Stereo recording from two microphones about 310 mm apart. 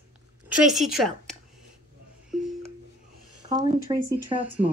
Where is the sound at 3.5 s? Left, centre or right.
Centre.